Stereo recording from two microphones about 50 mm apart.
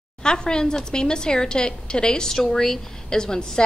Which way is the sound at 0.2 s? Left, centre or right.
Centre.